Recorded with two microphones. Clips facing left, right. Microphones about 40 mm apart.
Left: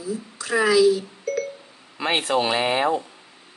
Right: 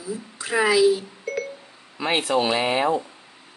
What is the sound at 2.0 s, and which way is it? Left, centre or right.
Speech, left.